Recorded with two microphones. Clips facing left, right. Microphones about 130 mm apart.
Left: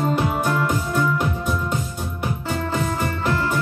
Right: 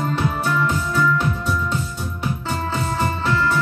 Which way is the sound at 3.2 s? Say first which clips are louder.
Right 1 dB; 45° left (ahead or behind).